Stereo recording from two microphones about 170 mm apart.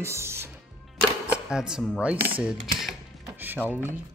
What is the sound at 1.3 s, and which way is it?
Speech, 5° right (ahead or behind).